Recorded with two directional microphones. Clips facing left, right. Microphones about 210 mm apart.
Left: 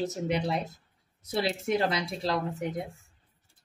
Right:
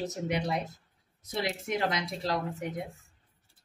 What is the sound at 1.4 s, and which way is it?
Speech, 30° left (ahead or behind).